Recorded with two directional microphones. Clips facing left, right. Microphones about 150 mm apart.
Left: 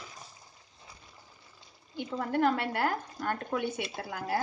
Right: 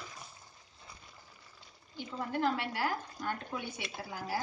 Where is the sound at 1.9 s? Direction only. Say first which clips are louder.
Left 6 dB; 55° left (ahead or behind).